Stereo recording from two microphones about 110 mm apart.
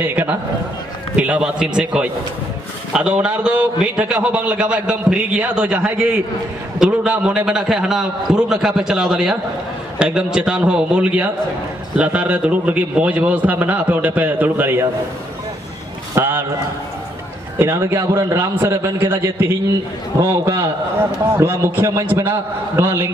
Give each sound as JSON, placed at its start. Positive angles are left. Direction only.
{"t": 0.0, "sound": "a man's voice", "side_deg": -15}
{"t": 16.2, "sound": "a man's voice", "side_deg": -20}
{"t": 17.6, "sound": "a man's voice", "side_deg": -25}